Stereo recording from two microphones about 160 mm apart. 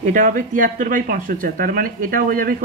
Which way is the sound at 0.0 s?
55° right (ahead or behind).